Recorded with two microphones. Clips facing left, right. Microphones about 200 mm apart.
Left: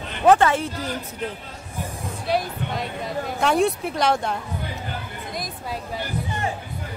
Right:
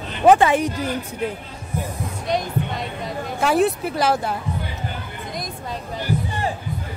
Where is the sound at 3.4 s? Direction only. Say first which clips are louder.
Right 2 dB; 5° right (ahead or behind).